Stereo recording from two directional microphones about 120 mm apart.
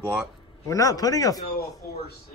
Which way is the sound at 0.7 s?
30° left (ahead or behind).